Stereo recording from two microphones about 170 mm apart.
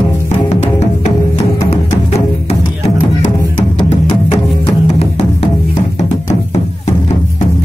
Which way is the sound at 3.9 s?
35° left (ahead or behind).